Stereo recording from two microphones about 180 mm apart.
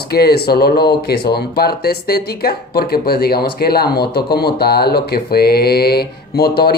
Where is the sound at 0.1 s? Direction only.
60° left (ahead or behind).